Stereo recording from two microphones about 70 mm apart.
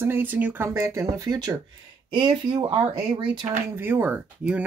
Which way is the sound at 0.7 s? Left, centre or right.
Right.